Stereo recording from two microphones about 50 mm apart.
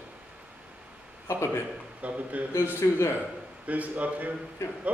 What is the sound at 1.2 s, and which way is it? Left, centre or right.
Speech, left.